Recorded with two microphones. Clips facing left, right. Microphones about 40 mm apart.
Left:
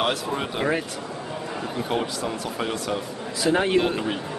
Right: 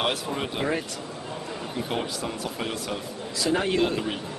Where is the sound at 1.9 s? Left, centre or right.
Centre.